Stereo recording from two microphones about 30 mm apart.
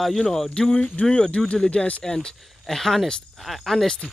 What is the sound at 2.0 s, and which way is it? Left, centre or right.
Speech, left.